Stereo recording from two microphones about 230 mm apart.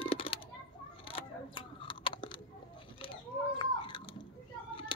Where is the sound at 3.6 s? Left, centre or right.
Left.